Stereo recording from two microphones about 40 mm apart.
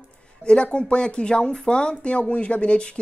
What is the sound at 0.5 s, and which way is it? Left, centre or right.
Speech, left.